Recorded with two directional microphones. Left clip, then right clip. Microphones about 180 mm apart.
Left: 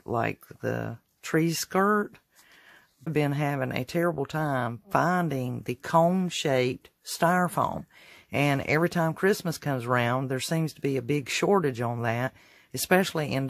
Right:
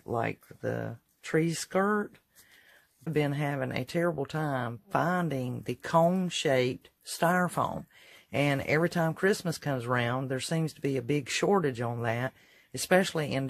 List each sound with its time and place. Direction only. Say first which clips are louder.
0.0 s speech: left 3 dB; 30° left (ahead or behind)